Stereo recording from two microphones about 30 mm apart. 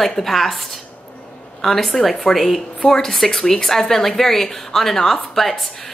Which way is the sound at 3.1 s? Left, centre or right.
Centre.